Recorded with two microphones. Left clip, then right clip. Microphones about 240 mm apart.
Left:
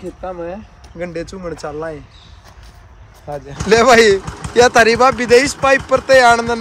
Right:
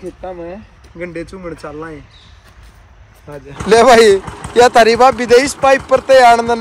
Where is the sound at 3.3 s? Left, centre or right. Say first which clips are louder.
Left 5 dB; left.